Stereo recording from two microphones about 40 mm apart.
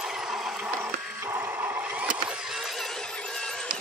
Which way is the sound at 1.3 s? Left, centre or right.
Right.